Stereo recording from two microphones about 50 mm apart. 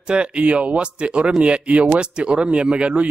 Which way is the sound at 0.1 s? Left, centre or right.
Right.